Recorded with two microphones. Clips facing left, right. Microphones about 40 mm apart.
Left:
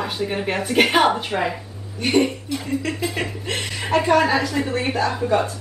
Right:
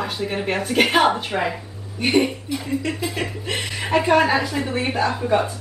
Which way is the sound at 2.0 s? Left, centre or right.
Centre.